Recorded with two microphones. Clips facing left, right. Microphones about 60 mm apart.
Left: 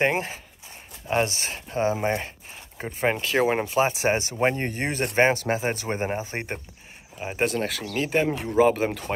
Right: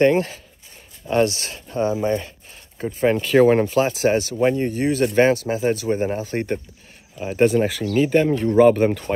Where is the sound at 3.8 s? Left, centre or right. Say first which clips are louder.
Right 4 dB; left.